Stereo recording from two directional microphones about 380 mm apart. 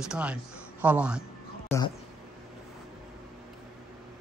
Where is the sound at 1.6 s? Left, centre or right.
Centre.